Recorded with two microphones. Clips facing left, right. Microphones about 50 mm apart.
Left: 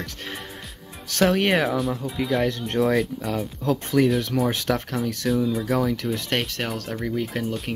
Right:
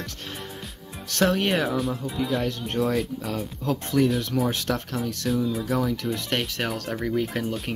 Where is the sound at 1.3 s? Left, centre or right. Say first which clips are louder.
Left 3 dB; left.